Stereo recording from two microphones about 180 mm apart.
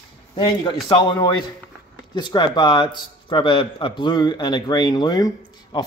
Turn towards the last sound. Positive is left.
turn(degrees=25)  # may be behind; listen again after turning